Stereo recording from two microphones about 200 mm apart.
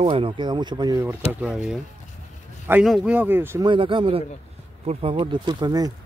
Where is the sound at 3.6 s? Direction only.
25° right (ahead or behind).